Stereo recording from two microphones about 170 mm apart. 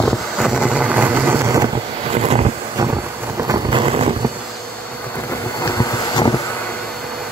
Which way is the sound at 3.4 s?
25° right (ahead or behind).